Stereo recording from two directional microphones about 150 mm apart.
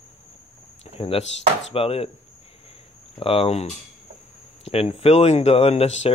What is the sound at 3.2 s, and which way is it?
Speech, 40° left (ahead or behind).